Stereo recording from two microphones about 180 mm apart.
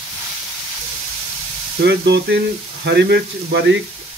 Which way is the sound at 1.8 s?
70° right (ahead or behind).